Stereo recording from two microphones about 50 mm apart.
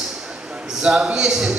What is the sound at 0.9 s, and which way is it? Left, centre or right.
Speech, centre.